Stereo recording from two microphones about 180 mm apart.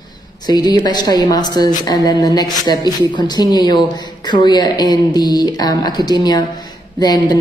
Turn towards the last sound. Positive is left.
turn(degrees=20)  # may be behind; listen again after turning